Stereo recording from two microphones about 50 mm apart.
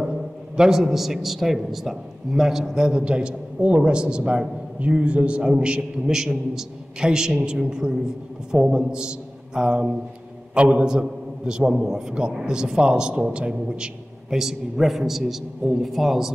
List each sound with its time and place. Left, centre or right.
0.6 s a man's voice: centre
6.0 s a man's voice: centre